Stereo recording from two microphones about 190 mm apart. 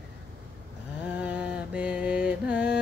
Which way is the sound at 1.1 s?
10° right (ahead or behind).